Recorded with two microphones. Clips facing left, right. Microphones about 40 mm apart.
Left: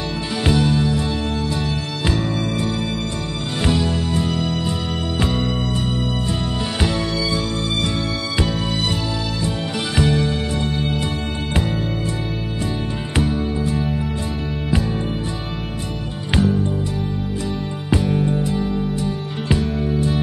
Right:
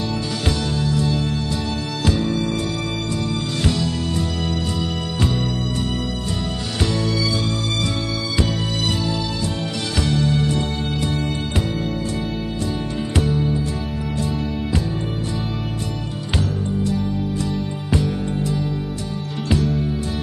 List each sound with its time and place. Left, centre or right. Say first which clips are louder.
0.5 s music: left 6 dB; centre
3.6 s music: left 4 dB; left
6.8 s music: even; centre
13.2 s music: left 1 dB; centre
17.4 s music: right 1 dB; centre
19.5 s music: right 1 dB; centre
19.8 s music: left 4 dB; centre